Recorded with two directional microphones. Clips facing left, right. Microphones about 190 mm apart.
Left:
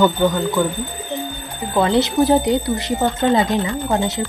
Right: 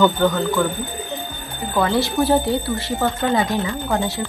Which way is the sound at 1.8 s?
20° left (ahead or behind).